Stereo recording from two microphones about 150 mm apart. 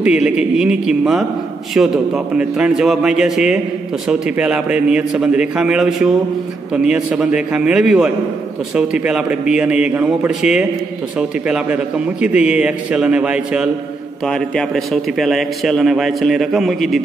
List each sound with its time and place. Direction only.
0.0 s a man's voice: 5° right (ahead or behind)
14.2 s a man's voice: 5° left (ahead or behind)